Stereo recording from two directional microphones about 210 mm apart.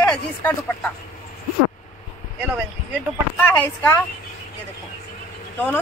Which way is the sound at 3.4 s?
10° left (ahead or behind).